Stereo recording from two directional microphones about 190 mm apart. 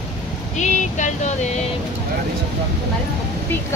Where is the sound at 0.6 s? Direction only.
40° left (ahead or behind).